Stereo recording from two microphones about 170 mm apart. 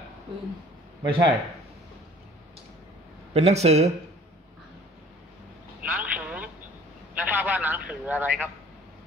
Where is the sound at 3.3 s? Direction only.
40° right (ahead or behind).